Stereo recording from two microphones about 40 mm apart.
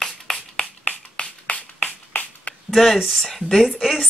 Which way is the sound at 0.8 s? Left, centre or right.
Left.